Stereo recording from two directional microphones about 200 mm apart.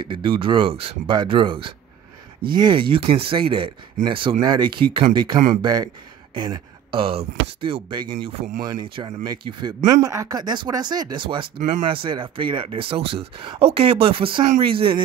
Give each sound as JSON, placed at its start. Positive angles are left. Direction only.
{"t": 0.0, "sound": "speech", "side_deg": -25}